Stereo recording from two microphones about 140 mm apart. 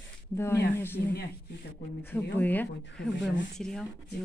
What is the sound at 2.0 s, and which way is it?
Speech, 15° left (ahead or behind).